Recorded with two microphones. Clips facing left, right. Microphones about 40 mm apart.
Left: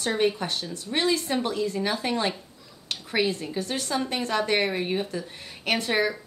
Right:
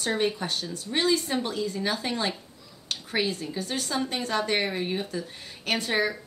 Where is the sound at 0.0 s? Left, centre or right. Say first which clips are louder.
Left 2 dB; centre.